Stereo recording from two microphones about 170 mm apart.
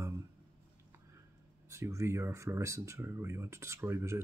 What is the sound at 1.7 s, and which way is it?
Speech, 15° right (ahead or behind).